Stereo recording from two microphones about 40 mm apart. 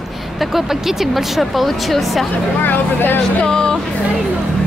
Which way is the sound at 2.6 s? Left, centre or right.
Left.